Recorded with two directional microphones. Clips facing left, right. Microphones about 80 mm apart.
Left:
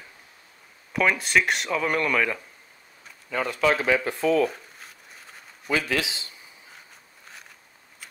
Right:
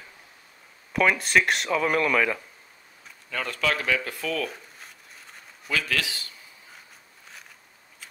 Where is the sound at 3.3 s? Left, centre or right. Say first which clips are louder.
Left 4 dB; centre.